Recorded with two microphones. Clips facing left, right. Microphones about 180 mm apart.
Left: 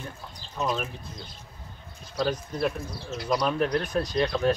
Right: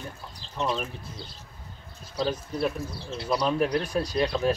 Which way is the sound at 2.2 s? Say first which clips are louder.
Even; 5° right (ahead or behind).